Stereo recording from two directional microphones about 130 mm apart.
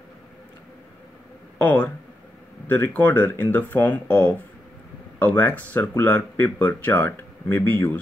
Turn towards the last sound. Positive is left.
turn(degrees=15)  # may be behind; listen again after turning